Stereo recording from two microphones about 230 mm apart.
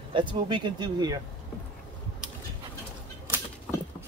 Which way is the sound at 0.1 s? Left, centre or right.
Centre.